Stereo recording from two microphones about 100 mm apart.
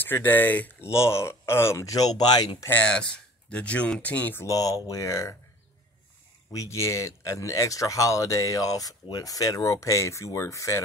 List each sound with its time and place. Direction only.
0.0 s speech: 20° left (ahead or behind)
0.9 s speech: 25° left (ahead or behind)
2.7 s speech: 10° left (ahead or behind)
4.5 s speech: 35° left (ahead or behind)
6.5 s speech: 30° left (ahead or behind)